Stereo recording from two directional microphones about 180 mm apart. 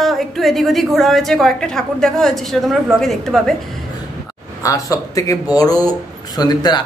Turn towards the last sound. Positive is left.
turn(degrees=25)  # may be behind; listen again after turning